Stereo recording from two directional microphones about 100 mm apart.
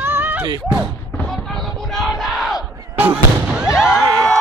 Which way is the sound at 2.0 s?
Centre (ahead or behind).